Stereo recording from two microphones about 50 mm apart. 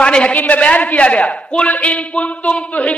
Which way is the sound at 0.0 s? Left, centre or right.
Left.